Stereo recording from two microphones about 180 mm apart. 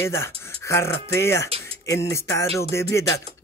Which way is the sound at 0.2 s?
15° left (ahead or behind).